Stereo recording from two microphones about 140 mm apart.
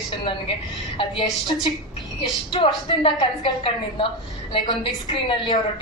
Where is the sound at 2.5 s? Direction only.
40° left (ahead or behind).